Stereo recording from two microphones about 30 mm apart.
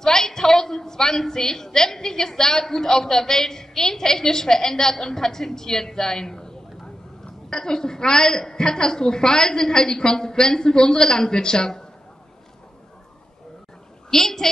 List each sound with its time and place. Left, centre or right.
0.0 s a woman's voice: centre
14.1 s a woman's voice: centre